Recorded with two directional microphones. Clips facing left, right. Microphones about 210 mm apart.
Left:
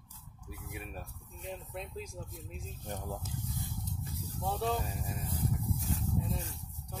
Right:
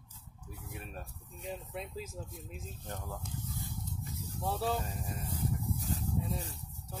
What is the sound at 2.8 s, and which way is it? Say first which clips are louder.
Speech: left 4 dB; 15° left (ahead or behind).